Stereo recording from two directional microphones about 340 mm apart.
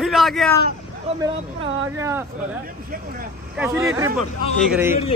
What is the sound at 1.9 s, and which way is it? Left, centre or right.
Speech, centre.